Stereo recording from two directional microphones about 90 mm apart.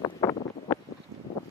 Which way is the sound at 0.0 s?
50° left (ahead or behind).